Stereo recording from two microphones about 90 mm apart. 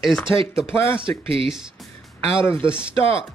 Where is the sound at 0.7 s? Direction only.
25° left (ahead or behind).